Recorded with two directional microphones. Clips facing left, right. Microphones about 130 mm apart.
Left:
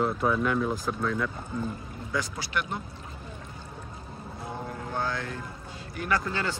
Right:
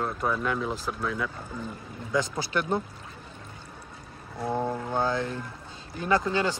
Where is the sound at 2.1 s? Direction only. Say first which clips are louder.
Right 4 dB; 25° right (ahead or behind).